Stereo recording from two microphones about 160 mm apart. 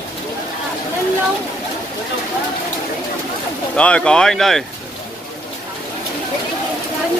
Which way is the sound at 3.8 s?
5° left (ahead or behind).